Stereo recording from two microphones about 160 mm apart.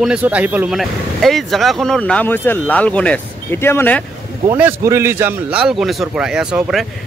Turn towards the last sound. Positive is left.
turn(degrees=-5)  # may be behind; listen again after turning